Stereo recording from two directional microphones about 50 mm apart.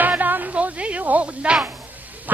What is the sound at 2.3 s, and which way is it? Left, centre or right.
Music, right.